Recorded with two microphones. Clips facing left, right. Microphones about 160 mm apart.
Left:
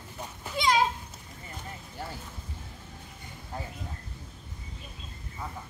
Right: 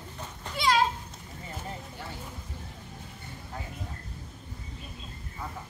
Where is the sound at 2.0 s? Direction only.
40° left (ahead or behind).